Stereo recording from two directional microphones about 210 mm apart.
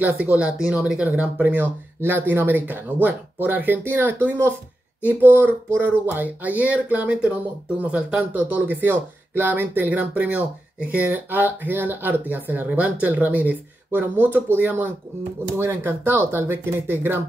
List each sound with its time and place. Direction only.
0.0 s speech: 5° right (ahead or behind)